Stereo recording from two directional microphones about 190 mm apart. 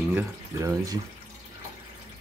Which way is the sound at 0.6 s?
20° right (ahead or behind).